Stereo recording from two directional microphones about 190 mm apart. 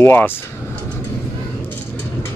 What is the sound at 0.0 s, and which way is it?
Speech, 10° left (ahead or behind).